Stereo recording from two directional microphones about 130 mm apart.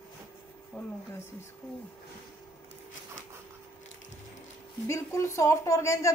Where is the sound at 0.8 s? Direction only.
15° left (ahead or behind).